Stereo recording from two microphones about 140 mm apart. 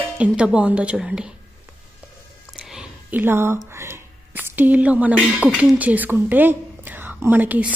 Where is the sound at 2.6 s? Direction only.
10° right (ahead or behind).